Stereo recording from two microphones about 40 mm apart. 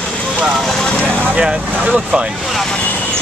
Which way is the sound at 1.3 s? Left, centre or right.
Right.